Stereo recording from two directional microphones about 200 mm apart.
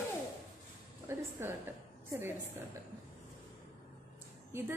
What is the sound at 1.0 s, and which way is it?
A woman's voice, 15° right (ahead or behind).